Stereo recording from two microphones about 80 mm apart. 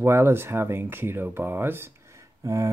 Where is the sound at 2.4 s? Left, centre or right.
Right.